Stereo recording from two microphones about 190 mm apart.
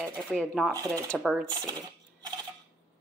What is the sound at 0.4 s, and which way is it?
Speech, 5° left (ahead or behind).